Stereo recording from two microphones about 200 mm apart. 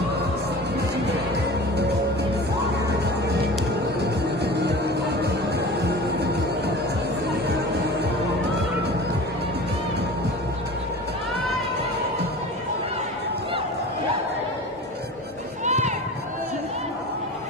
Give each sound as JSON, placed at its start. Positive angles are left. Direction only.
{"t": 4.0, "sound": "music", "side_deg": -55}
{"t": 15.6, "sound": "run", "side_deg": -35}